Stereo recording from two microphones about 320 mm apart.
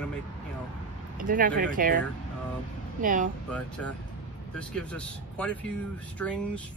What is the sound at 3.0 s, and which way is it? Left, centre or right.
Speech, right.